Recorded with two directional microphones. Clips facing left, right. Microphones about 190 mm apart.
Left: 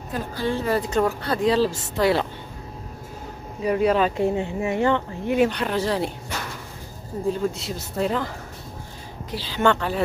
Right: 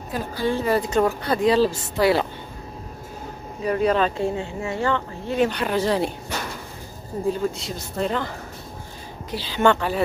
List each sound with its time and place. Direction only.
0.1 s speech: 10° right (ahead or behind)
3.6 s speech: 10° left (ahead or behind)
4.2 s speech: 20° left (ahead or behind)
5.5 s speech: 5° right (ahead or behind)
5.8 s speech: 20° right (ahead or behind)
7.5 s speech: 5° left (ahead or behind)
9.3 s speech: 15° right (ahead or behind)